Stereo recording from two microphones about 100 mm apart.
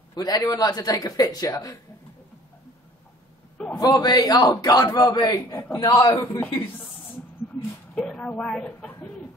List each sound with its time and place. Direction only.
0.1 s a man's voice: 40° left (ahead or behind)
3.8 s a man's voice: 40° left (ahead or behind)
5.9 s a man's voice: 45° left (ahead or behind)
7.9 s a man's voice: 10° left (ahead or behind)